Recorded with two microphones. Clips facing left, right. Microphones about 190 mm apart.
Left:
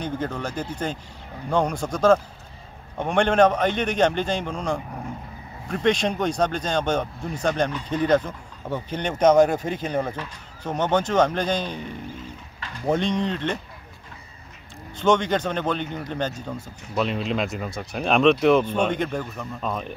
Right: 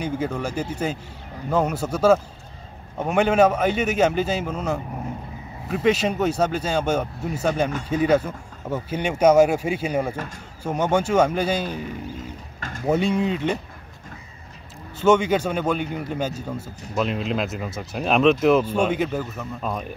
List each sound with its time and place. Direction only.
0.0 s speech: 10° right (ahead or behind)
12.5 s a sound: 45° right (ahead or behind)
12.8 s speech: 5° right (ahead or behind)
15.0 s speech: 5° right (ahead or behind)